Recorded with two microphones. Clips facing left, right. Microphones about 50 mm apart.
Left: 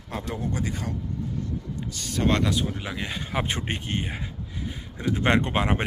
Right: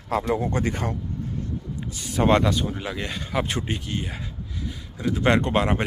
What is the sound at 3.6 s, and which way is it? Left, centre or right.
Speech, left.